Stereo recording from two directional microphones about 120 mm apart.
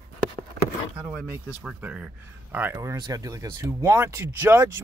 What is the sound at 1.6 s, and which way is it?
Speech, 10° right (ahead or behind).